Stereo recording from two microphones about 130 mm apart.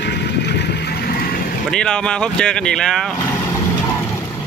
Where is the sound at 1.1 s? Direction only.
90° left.